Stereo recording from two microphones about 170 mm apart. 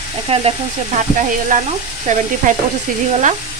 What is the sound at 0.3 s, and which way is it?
Speech, 35° right (ahead or behind).